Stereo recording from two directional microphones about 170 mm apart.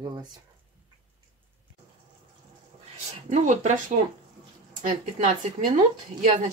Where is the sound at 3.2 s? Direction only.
45° right (ahead or behind).